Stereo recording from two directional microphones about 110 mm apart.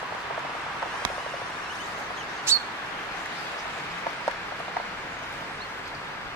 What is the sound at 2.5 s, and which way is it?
Bird, 25° right (ahead or behind).